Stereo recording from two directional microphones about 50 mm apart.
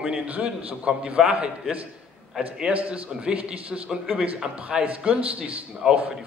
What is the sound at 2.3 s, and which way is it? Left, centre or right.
A man's voice, centre.